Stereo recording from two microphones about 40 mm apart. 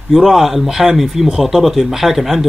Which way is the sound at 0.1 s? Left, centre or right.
Centre.